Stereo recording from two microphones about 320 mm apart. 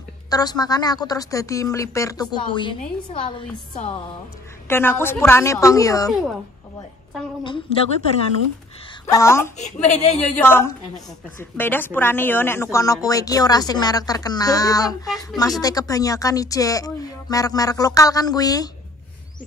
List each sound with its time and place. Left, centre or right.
0.3 s a woman's voice: centre
4.6 s a woman's voice: centre
7.7 s a woman's voice: centre
9.0 s a woman's voice: centre
9.6 s a woman's voice: left
10.4 s a woman's voice: centre